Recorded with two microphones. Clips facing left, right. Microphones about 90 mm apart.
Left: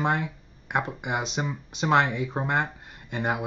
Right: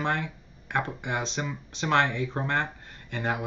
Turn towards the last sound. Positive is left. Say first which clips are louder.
# left 2 dB
turn(degrees=20)  # may be behind; listen again after turning